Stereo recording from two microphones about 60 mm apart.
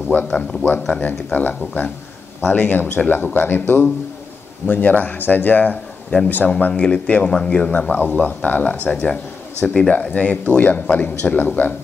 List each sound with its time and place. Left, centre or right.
0.1 s speech: left